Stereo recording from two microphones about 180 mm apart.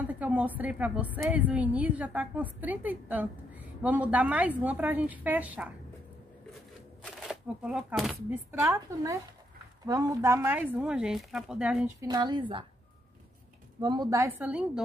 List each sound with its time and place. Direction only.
0.0 s a woman's voice: 10° right (ahead or behind)
7.0 s speech: centre (ahead or behind)
8.3 s a woman's voice: 10° right (ahead or behind)
12.0 s a woman's voice: 25° right (ahead or behind)
13.7 s a woman's voice: 20° right (ahead or behind)